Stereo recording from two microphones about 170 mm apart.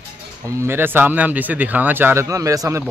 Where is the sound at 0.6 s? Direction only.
15° right (ahead or behind).